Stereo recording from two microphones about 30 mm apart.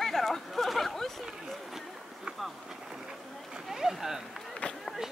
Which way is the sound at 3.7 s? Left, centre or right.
Centre.